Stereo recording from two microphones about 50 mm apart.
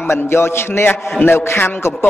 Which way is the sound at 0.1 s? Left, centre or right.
Left.